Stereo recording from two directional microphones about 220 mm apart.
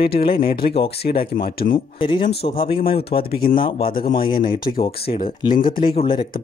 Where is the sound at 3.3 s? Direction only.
40° left (ahead or behind).